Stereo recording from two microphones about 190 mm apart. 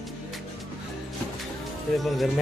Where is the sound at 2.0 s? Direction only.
Centre (ahead or behind).